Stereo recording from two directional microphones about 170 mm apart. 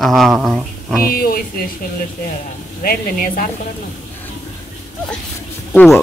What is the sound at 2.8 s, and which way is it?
Speech, 55° left (ahead or behind).